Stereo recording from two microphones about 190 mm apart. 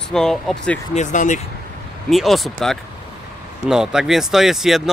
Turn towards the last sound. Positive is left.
turn(degrees=0)  # may be behind; listen again after turning